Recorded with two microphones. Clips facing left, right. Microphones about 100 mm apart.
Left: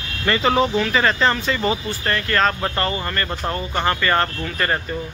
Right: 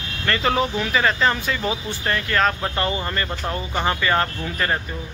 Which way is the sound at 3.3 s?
5° right (ahead or behind).